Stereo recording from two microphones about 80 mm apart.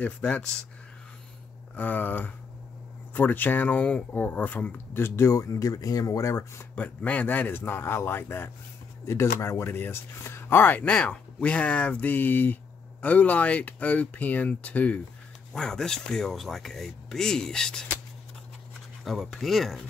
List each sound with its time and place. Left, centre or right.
0.0 s speech: centre
1.8 s speech: left
6.8 s speech: centre
15.5 s speech: centre
19.0 s speech: centre